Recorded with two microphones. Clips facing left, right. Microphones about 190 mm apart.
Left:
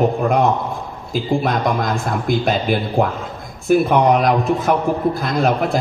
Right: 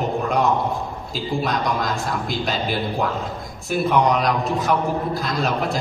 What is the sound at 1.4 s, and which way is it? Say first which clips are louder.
A man's voice: left 4 dB; 55° left (ahead or behind).